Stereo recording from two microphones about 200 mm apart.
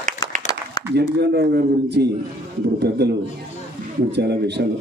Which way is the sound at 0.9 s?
55° right (ahead or behind).